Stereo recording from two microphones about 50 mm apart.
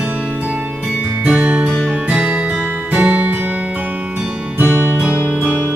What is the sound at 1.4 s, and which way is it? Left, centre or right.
Music, right.